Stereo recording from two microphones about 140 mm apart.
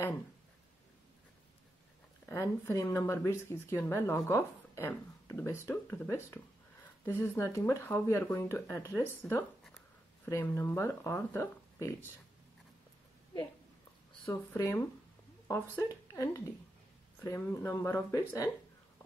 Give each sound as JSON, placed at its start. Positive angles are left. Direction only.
{"t": 2.2, "sound": "speech", "side_deg": 20}
{"t": 14.5, "sound": "speech", "side_deg": 20}